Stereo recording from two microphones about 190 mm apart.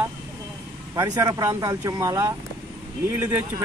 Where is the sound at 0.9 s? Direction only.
15° right (ahead or behind).